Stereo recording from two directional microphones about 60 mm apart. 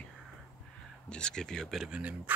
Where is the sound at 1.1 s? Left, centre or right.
Centre.